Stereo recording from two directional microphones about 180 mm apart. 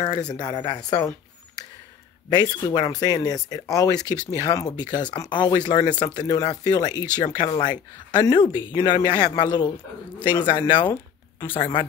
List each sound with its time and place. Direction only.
0.3 s speech: 25° left (ahead or behind)
2.2 s speech: 20° left (ahead or behind)